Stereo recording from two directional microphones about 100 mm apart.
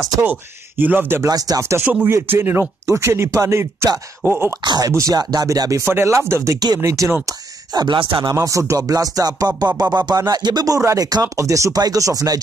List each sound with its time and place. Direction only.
0.2 s speech: 20° right (ahead or behind)
1.3 s speech: 35° right (ahead or behind)
4.6 s speech: 40° right (ahead or behind)
7.2 s speech: 45° right (ahead or behind)
8.4 s speech: 30° right (ahead or behind)